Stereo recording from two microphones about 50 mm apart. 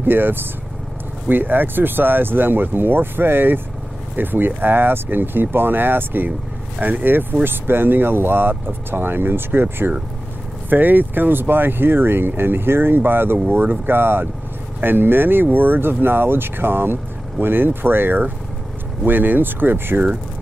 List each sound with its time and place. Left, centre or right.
0.0 s speech: right